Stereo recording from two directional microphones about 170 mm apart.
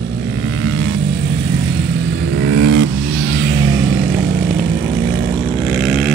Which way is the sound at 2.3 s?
90° right.